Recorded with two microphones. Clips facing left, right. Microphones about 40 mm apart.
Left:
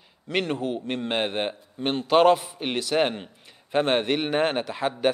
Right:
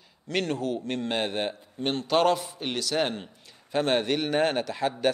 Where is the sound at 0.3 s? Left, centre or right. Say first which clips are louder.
Left 2 dB; left.